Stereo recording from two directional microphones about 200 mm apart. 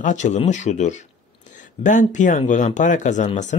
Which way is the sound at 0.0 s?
35° left (ahead or behind).